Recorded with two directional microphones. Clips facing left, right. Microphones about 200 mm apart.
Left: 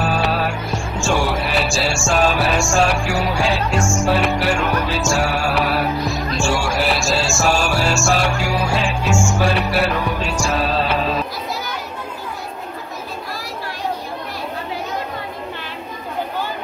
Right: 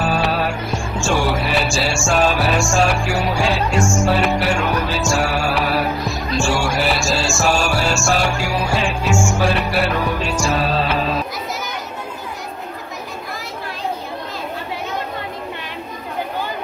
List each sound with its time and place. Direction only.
0.0 s music: centre (ahead or behind)